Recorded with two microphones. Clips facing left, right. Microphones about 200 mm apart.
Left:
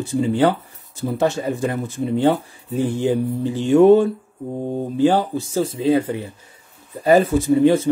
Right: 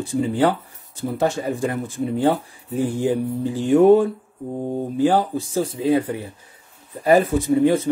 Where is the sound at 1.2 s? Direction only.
25° left (ahead or behind).